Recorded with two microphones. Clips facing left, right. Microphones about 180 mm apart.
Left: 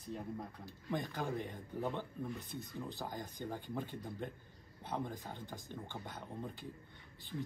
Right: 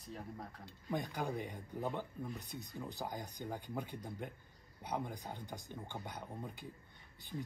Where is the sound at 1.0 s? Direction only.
15° right (ahead or behind).